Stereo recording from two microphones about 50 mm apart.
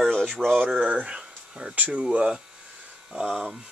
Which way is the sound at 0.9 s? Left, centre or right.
Centre.